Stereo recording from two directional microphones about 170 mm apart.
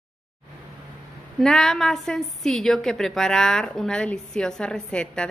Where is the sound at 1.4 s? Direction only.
5° left (ahead or behind).